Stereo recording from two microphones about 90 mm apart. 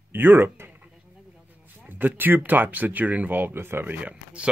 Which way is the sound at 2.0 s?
20° right (ahead or behind).